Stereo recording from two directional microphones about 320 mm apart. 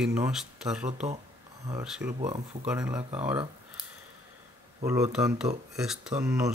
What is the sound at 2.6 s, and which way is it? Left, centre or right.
Speech, centre.